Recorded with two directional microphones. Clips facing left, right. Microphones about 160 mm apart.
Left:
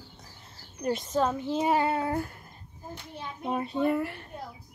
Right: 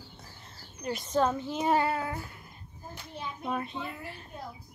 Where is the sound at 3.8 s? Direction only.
65° left (ahead or behind).